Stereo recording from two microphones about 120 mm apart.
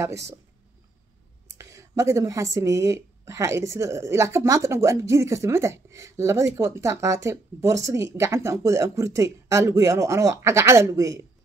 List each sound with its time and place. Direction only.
0.0 s speech: 25° right (ahead or behind)
1.6 s speech: 25° right (ahead or behind)